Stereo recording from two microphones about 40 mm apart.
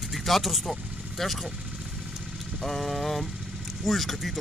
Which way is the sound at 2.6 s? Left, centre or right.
Centre.